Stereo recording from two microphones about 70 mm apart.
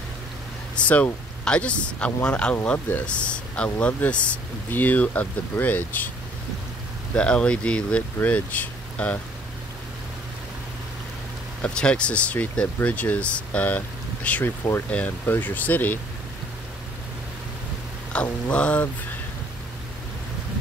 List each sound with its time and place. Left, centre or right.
0.7 s speech: centre
7.2 s speech: centre
11.6 s speech: centre
18.1 s speech: centre